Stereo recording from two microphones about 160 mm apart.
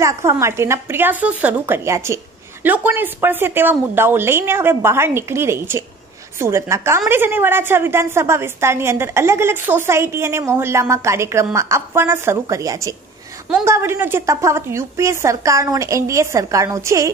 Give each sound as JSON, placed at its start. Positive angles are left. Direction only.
{"t": 0.0, "sound": "a woman's voice", "side_deg": -20}